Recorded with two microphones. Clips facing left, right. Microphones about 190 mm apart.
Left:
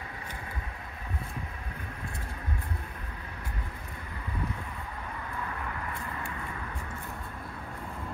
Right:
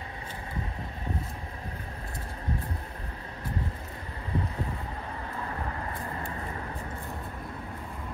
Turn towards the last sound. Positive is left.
turn(degrees=-35)  # may be behind; listen again after turning